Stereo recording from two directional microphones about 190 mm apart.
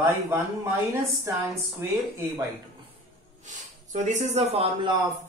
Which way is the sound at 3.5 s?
40° right (ahead or behind).